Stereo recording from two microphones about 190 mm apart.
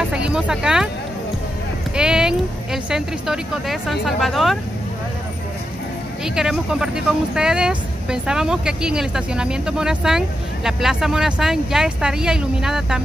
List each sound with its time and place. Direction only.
0.1 s music: 5° right (ahead or behind)
2.0 s speech: 5° right (ahead or behind)
6.2 s speech: 5° right (ahead or behind)